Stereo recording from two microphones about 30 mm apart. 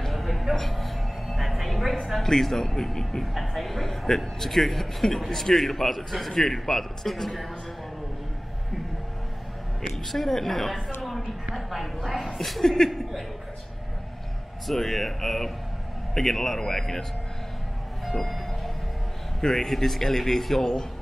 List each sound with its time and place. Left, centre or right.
0.0 s music: centre
2.2 s a man's voice: centre
3.3 s a man's voice: centre
9.8 s a man's voice: centre
14.7 s a man's voice: centre
19.4 s a man's voice: centre